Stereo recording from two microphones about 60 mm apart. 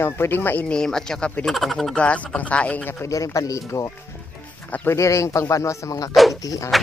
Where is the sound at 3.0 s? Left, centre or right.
Left.